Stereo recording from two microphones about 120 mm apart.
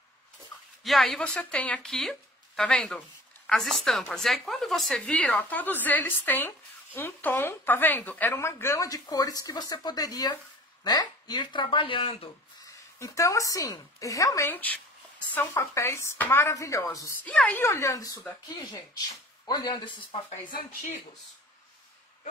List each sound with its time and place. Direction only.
0.8 s a woman's voice: centre (ahead or behind); by 12.3 s 45° left (ahead or behind)
12.6 s a woman's voice: 25° left (ahead or behind)
17.2 s speech: 10° left (ahead or behind); by 20.2 s 40° left (ahead or behind)